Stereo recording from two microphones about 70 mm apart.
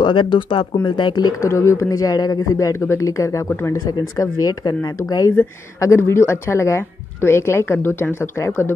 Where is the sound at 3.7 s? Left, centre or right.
Left.